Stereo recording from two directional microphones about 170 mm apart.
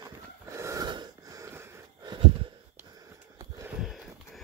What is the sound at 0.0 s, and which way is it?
Wheeze, 20° right (ahead or behind).